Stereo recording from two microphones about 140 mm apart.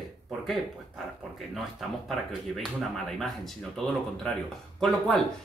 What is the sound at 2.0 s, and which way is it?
Speech, centre (ahead or behind).